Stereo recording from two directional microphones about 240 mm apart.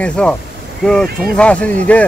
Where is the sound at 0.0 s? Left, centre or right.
Centre.